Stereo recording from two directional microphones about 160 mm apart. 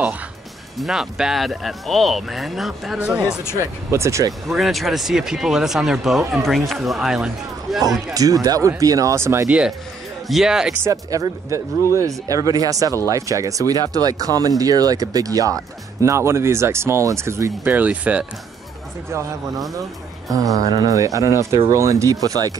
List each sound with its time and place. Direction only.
0.7 s speech: centre (ahead or behind)
3.9 s speech: 20° right (ahead or behind)
4.3 s speech: centre (ahead or behind)
8.1 s speech: 20° right (ahead or behind)
10.2 s speech: centre (ahead or behind)
10.8 s speech: 20° right (ahead or behind)
20.2 s speech: 20° right (ahead or behind)